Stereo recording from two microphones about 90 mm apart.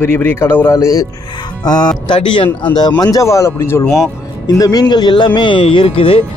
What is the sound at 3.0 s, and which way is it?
Speech, 40° left (ahead or behind).